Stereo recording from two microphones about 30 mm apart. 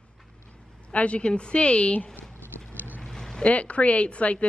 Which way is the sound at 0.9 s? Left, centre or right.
Left.